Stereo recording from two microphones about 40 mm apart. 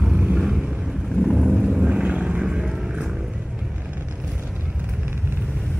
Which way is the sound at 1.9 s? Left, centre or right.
Right.